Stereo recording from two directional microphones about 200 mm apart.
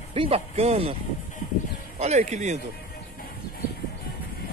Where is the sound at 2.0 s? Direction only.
35° right (ahead or behind).